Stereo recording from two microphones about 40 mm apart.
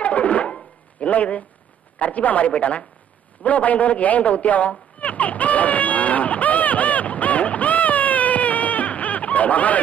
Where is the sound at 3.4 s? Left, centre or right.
Left.